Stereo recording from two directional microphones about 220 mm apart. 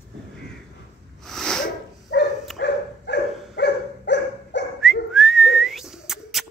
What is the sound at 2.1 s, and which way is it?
Dog, 50° left (ahead or behind).